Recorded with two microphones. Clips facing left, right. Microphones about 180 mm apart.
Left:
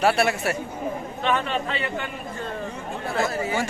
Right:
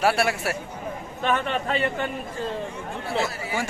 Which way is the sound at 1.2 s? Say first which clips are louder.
Even; 50° right (ahead or behind).